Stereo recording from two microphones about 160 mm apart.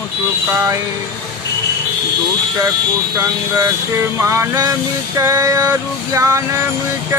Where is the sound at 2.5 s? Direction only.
20° right (ahead or behind).